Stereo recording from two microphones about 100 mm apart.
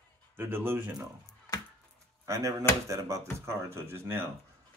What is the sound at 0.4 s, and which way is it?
Speech, 20° right (ahead or behind).